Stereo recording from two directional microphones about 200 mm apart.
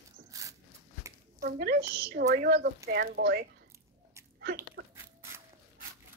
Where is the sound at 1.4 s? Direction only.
55° right (ahead or behind).